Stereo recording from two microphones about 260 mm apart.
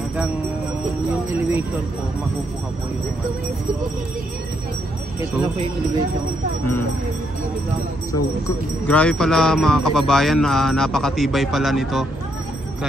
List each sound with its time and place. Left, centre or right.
8.1 s speech: centre